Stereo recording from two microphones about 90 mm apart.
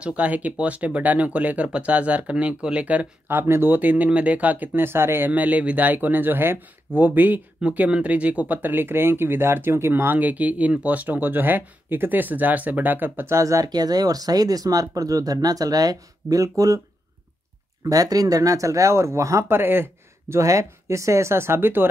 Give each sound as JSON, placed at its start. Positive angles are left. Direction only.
{"t": 0.0, "sound": "speech", "side_deg": -15}
{"t": 17.8, "sound": "speech", "side_deg": -45}